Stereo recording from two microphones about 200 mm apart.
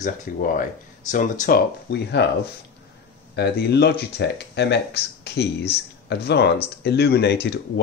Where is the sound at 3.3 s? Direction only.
55° left (ahead or behind).